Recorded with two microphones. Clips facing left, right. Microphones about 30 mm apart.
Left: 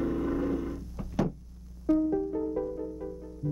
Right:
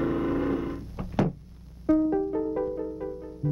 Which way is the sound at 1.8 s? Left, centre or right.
Right.